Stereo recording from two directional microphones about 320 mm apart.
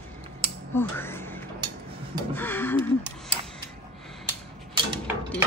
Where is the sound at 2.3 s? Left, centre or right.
Centre.